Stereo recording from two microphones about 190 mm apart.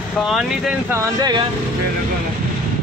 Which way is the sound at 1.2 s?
20° right (ahead or behind).